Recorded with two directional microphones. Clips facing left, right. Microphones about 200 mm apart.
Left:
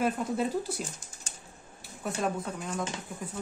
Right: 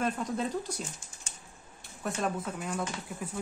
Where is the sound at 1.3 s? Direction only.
35° left (ahead or behind).